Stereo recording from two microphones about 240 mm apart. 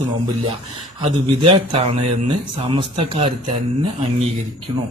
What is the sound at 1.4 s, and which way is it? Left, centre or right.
Speech, right.